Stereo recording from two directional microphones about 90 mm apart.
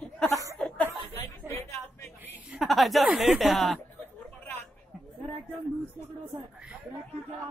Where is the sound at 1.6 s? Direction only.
30° left (ahead or behind).